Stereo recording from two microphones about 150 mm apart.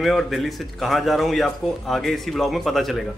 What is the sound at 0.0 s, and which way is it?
Speech, centre (ahead or behind).